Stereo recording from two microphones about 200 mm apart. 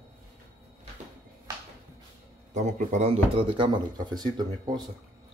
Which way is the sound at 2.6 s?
35° right (ahead or behind).